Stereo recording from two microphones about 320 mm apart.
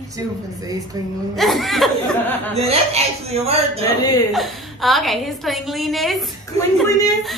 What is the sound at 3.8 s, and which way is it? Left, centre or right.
Speech, centre.